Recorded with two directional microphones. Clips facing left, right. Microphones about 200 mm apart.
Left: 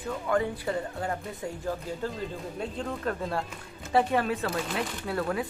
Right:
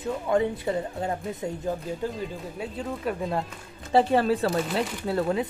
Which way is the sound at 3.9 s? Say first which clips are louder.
Right 4 dB; 30° right (ahead or behind).